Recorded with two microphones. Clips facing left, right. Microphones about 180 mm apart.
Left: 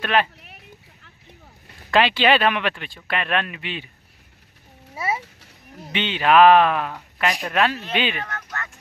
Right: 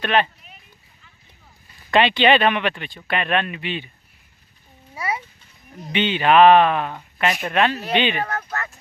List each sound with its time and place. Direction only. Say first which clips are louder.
0.0 s speech: right 1 dB; 5° left (ahead or behind)
1.9 s speech: right 2 dB; centre (ahead or behind)
4.9 s a sound: left 1 dB; 25° left (ahead or behind)
5.8 s speech: right 4 dB; centre (ahead or behind)
8.2 s speech: right 6 dB; 35° right (ahead or behind)